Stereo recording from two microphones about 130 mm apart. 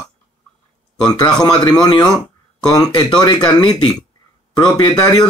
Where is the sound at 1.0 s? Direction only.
30° left (ahead or behind).